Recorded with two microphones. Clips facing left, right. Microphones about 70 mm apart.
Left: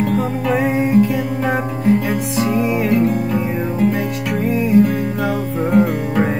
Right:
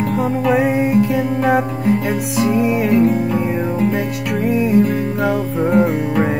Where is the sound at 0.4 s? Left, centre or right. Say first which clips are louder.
Right 4 dB; centre.